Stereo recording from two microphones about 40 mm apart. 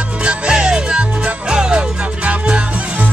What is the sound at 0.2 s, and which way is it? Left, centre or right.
Music, right.